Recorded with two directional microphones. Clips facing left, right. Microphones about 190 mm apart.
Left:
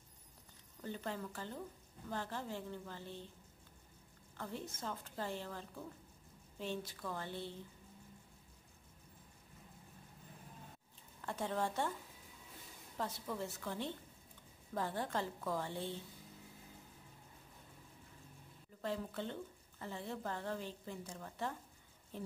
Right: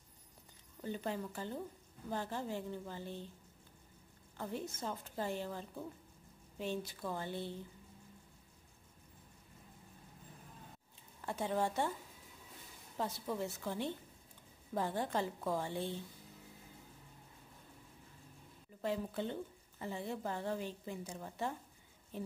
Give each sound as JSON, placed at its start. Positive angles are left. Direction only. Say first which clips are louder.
{"t": 0.8, "sound": "a woman's voice", "louder": "right 3 dB", "side_deg": -15}
{"t": 4.4, "sound": "a woman's voice", "louder": "right 4 dB", "side_deg": -15}
{"t": 11.1, "sound": "a woman's voice", "louder": "right 3 dB", "side_deg": -10}
{"t": 12.9, "sound": "a woman's voice", "louder": "right 3 dB", "side_deg": -15}
{"t": 18.8, "sound": "a woman's voice", "louder": "right 3 dB", "side_deg": -15}